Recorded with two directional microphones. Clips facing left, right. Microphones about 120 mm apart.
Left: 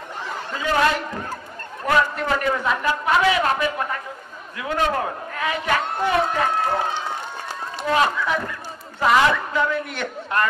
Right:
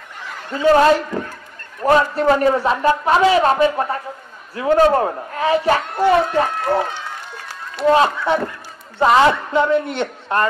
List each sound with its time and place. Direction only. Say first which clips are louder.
0.6 s a man's voice: right 8 dB; 35° right (ahead or behind)
7.9 s a man's voice: right 5 dB; 30° right (ahead or behind)